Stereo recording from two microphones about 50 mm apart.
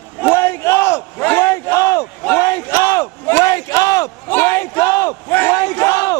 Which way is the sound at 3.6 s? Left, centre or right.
Left.